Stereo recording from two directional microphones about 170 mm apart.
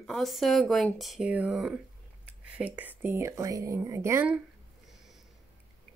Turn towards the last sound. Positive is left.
turn(degrees=0)  # may be behind; listen again after turning